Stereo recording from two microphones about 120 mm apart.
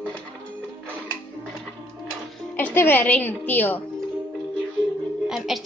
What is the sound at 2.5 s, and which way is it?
A woman's voice, 15° left (ahead or behind).